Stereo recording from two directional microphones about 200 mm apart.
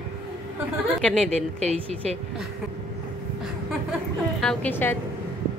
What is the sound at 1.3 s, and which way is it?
Speech, 35° right (ahead or behind).